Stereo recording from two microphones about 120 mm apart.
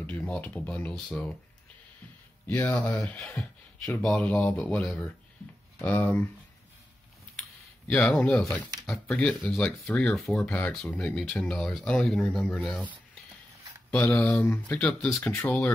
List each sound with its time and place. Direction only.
0.0 s speech: 10° left (ahead or behind)
2.4 s speech: 15° left (ahead or behind)
7.9 s speech: 10° left (ahead or behind)
14.2 s speech: 15° left (ahead or behind)